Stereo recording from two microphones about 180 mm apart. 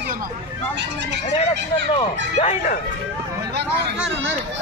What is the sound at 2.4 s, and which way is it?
Speech, 40° left (ahead or behind).